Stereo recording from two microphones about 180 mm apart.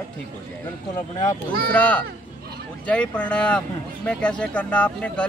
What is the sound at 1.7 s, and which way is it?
A man's voice, 10° left (ahead or behind).